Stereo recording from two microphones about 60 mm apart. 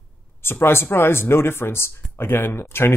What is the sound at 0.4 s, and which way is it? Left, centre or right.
Speech, left.